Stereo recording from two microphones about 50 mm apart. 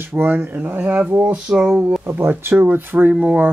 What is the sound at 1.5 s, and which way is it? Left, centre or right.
Speech, right.